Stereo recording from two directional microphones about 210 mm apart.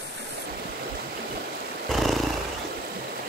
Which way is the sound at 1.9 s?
Centre (ahead or behind).